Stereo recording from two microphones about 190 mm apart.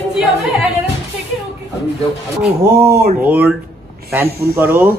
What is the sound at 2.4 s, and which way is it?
Speech, 55° right (ahead or behind).